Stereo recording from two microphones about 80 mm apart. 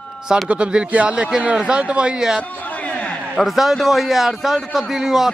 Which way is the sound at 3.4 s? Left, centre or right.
Centre.